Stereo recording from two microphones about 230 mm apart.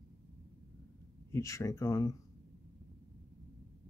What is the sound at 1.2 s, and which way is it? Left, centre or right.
Speech, centre.